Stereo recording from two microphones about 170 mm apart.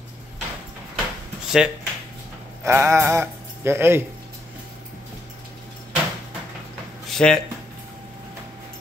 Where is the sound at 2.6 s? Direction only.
15° right (ahead or behind).